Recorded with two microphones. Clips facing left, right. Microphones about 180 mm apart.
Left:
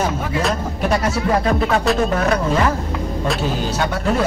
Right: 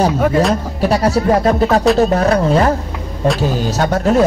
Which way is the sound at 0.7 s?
35° right (ahead or behind).